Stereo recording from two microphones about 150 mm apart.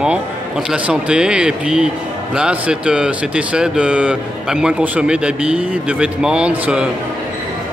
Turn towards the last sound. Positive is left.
turn(degrees=-5)  # may be behind; listen again after turning